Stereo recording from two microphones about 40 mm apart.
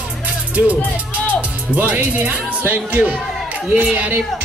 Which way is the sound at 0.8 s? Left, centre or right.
Left.